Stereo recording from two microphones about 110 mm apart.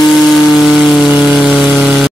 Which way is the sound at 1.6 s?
Centre (ahead or behind).